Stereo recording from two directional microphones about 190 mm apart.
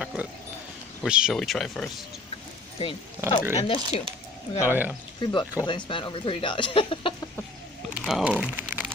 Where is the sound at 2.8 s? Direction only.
25° left (ahead or behind).